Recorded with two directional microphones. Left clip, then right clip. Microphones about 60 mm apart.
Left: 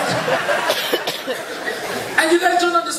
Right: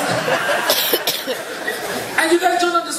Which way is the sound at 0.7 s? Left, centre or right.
Right.